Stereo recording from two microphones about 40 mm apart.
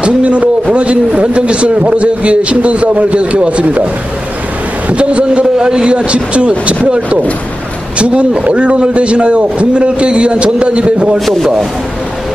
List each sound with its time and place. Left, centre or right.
0.0 s a man's voice: right
4.8 s a man's voice: right
8.0 s a man's voice: right
11.1 s a man's voice: centre